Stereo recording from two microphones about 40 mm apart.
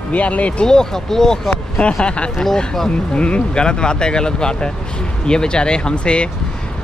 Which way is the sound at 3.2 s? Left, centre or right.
Left.